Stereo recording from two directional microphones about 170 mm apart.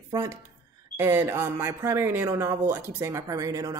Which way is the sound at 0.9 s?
15° right (ahead or behind).